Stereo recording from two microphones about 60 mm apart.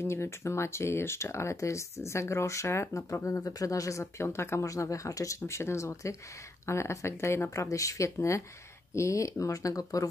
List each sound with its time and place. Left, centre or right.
0.0 s speech: left
3.3 s speech: left
4.0 s speech: left
4.6 s speech: left
7.5 s speech: left